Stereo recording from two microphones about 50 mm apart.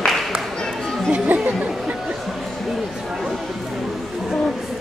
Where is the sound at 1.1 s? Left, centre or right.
Right.